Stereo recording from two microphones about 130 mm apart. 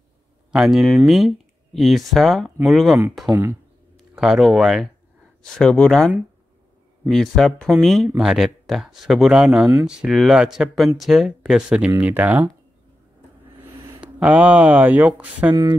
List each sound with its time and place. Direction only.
0.5 s speech: 5° right (ahead or behind)
3.3 s speech: 25° right (ahead or behind)
4.1 s speech: 5° right (ahead or behind)
14.0 s speech: 10° right (ahead or behind)
15.5 s speech: 30° right (ahead or behind)